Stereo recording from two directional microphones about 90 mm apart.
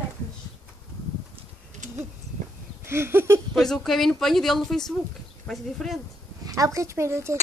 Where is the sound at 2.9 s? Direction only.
30° right (ahead or behind).